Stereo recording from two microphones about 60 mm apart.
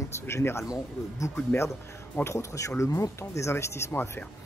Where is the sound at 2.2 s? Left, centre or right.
Left.